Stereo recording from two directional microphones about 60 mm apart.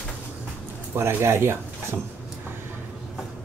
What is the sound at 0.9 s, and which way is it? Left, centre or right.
Speech, right.